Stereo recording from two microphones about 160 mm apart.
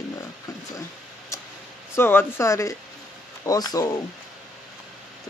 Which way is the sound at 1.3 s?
20° left (ahead or behind).